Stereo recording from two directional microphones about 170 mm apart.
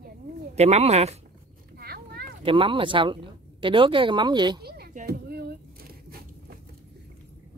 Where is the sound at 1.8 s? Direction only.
65° right (ahead or behind).